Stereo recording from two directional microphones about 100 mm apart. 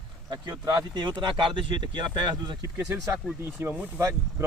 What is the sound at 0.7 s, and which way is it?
Speech, 50° right (ahead or behind).